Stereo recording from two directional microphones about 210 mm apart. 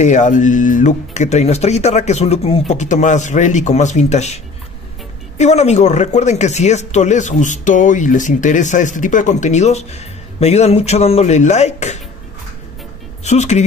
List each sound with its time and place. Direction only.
0.0 s a man's voice: 35° left (ahead or behind)
5.4 s a man's voice: 30° left (ahead or behind)
13.2 s a man's voice: 30° left (ahead or behind)